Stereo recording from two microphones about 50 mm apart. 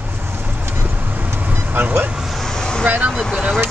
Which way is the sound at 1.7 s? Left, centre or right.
Right.